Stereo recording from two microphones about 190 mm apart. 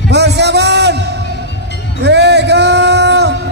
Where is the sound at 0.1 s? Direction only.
60° right (ahead or behind).